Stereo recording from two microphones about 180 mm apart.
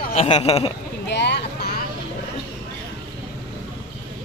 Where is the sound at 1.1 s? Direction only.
70° left (ahead or behind).